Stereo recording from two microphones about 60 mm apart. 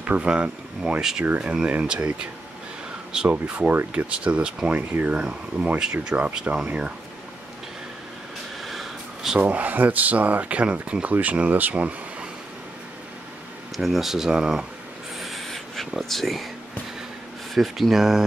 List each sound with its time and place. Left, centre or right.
0.0 s speech: centre
3.3 s speech: right
8.6 s snort: centre
9.4 s speech: right
13.7 s speech: centre
15.1 s a sound: centre
17.6 s speech: centre